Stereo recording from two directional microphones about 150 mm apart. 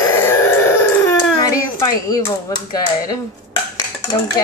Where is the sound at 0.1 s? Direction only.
15° left (ahead or behind).